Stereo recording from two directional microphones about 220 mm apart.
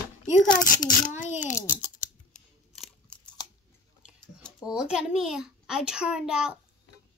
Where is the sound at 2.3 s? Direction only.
Centre (ahead or behind).